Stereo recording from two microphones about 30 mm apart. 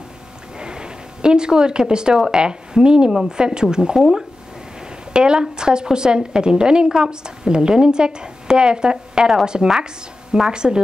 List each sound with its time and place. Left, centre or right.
0.6 s a sound: right
2.3 s a woman's voice: right
3.9 s speech: centre
5.1 s a woman's voice: right